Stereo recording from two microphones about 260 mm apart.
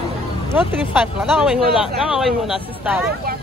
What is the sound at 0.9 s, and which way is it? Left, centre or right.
Speech, centre.